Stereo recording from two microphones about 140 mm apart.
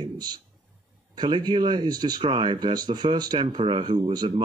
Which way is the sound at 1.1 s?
30° right (ahead or behind).